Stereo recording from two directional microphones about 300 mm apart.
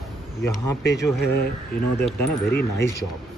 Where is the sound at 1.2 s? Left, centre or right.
Left.